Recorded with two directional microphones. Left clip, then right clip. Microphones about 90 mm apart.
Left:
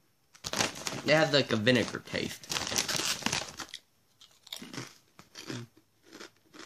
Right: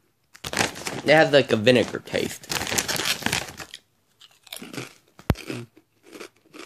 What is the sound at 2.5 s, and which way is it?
Crumpling, 5° right (ahead or behind).